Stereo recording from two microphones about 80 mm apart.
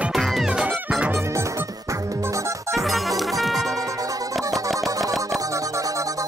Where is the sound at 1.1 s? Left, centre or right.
Right.